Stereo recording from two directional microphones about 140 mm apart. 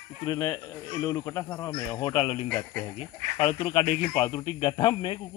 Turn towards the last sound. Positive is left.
turn(degrees=35)  # may be behind; listen again after turning